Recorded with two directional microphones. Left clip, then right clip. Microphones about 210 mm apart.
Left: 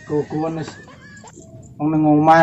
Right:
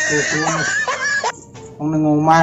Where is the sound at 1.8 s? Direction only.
20° left (ahead or behind).